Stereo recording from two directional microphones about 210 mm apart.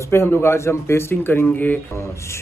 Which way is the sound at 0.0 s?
10° left (ahead or behind).